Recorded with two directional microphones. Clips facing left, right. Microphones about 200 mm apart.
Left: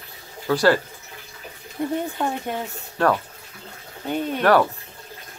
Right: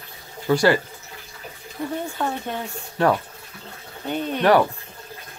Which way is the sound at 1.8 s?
20° left (ahead or behind).